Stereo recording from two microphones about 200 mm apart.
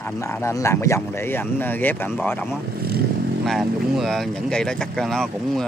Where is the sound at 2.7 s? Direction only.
50° right (ahead or behind).